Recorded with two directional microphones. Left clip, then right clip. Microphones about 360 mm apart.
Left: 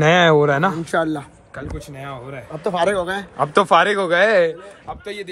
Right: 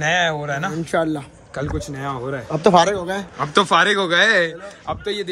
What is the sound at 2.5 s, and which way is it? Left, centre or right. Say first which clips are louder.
Speech: right 9 dB; right.